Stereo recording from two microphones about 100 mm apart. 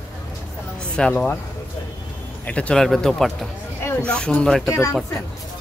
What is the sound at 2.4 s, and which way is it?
Speech, 15° left (ahead or behind).